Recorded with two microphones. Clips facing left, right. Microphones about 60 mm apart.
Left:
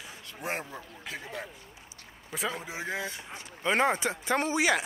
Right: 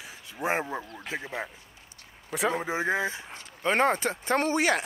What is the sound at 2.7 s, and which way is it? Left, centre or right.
Speech, right.